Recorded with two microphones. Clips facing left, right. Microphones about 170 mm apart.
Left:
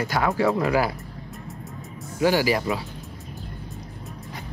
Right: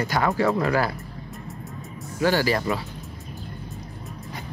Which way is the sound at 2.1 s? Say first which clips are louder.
Left 1 dB; 10° left (ahead or behind).